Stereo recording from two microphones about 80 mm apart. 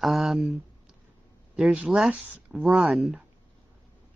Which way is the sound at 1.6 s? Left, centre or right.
Centre.